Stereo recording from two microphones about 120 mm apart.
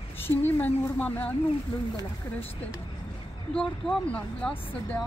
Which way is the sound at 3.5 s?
5° left (ahead or behind).